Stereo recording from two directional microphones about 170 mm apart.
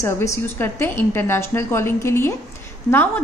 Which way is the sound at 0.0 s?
15° left (ahead or behind).